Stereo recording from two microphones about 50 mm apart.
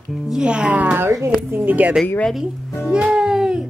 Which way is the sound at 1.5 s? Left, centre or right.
Right.